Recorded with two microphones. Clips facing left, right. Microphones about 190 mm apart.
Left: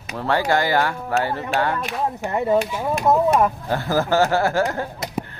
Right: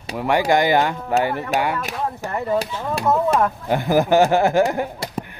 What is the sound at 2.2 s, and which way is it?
Speech, 20° left (ahead or behind).